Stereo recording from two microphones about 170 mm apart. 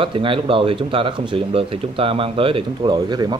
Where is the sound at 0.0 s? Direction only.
30° right (ahead or behind).